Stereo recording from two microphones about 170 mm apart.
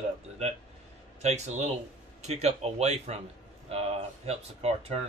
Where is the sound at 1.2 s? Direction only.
40° right (ahead or behind).